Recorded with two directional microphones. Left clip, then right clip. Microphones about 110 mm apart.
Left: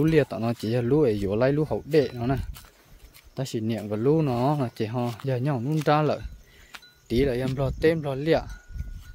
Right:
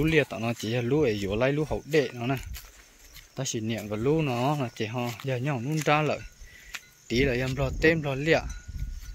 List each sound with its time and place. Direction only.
0.0 s speech: 65° left (ahead or behind)
7.1 s speech: 45° left (ahead or behind)